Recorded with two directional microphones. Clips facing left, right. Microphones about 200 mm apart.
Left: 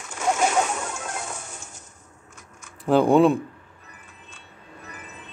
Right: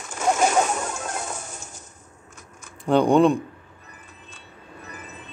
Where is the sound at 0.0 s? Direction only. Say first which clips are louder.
Right 2 dB; 40° right (ahead or behind).